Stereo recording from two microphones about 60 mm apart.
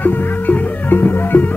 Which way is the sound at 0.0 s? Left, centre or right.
Left.